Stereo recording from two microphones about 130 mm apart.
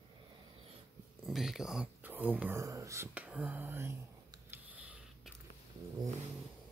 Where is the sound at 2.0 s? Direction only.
15° right (ahead or behind).